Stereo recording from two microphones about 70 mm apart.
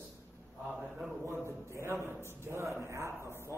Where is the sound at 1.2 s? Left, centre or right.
Right.